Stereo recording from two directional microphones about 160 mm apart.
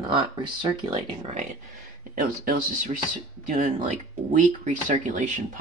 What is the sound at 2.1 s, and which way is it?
Speech, 60° right (ahead or behind).